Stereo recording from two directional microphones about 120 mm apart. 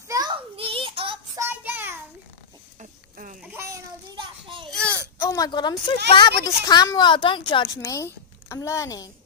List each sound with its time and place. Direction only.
0.6 s child singing: 45° right (ahead or behind)
1.3 s child singing: 20° right (ahead or behind)
4.1 s children playing: 40° right (ahead or behind)
4.6 s baby cry: 5° left (ahead or behind)
5.2 s a woman's voice: 30° left (ahead or behind)
7.8 s a woman's voice: 25° left (ahead or behind)